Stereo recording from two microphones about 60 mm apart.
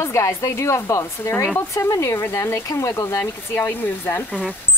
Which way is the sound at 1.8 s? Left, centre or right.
Left.